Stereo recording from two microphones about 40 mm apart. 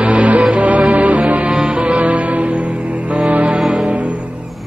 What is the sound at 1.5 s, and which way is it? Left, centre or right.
Music, right.